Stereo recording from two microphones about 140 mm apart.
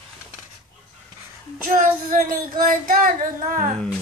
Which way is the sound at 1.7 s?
70° right (ahead or behind).